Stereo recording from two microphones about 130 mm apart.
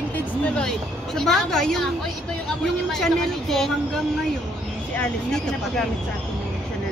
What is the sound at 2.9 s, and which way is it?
Speech, 5° left (ahead or behind).